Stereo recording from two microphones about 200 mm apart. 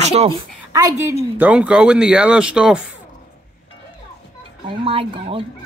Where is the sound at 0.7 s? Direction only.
15° right (ahead or behind).